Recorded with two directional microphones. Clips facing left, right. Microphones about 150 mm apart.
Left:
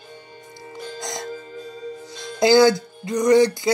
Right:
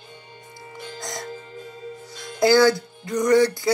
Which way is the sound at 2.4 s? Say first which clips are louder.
Left 2 dB; 20° left (ahead or behind).